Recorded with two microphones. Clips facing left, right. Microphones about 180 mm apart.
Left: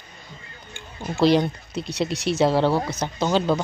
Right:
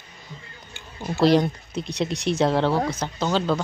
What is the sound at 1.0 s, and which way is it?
Speech, centre (ahead or behind).